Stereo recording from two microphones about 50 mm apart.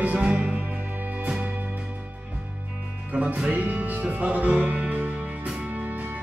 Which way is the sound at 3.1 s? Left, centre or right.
Right.